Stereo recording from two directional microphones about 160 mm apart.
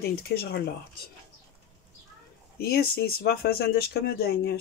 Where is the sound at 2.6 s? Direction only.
75° left (ahead or behind).